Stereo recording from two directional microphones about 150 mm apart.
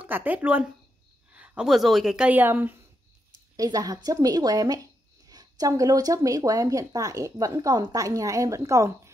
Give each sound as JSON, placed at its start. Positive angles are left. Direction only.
{"t": 0.0, "sound": "speech", "side_deg": -10}
{"t": 3.5, "sound": "speech", "side_deg": -25}